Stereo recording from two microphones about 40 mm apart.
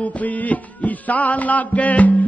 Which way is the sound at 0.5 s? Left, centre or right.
Left.